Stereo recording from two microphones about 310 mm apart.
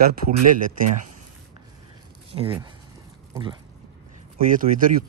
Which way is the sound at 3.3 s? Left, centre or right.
Centre.